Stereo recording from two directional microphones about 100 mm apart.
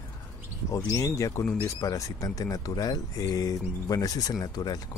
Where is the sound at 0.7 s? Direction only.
30° left (ahead or behind).